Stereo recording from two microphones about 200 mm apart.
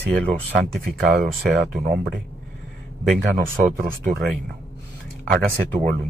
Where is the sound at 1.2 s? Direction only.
50° right (ahead or behind).